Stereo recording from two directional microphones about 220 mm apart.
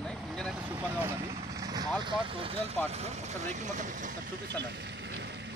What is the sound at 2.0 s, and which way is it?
Speech, 25° right (ahead or behind).